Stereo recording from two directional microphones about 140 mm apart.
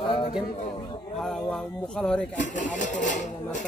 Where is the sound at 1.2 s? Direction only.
5° left (ahead or behind).